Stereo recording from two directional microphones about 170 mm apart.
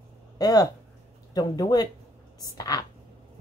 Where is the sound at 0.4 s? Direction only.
20° left (ahead or behind).